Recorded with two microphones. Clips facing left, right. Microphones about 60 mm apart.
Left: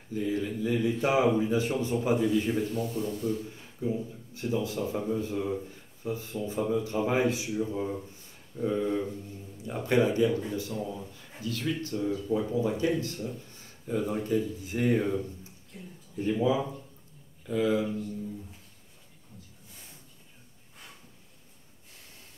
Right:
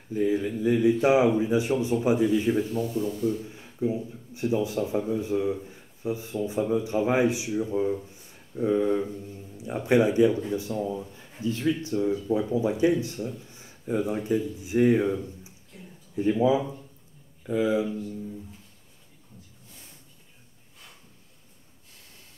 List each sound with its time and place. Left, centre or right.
0.1 s speech: right; by 3.3 s centre
3.4 s a man's voice: right
8.5 s speech: right
16.2 s speech: centre